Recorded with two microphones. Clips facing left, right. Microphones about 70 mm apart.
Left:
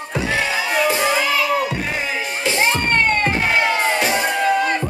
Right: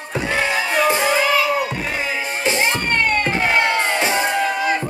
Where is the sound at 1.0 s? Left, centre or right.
Centre.